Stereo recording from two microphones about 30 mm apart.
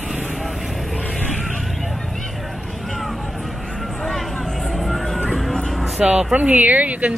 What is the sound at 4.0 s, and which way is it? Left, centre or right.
Vehicle, centre.